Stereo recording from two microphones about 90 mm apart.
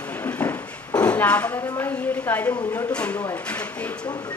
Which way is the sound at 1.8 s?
25° left (ahead or behind).